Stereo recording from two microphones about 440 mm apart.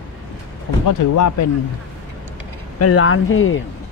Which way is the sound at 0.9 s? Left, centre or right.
Left.